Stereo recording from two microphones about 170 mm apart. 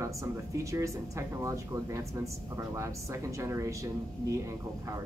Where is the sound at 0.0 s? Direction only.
15° right (ahead or behind).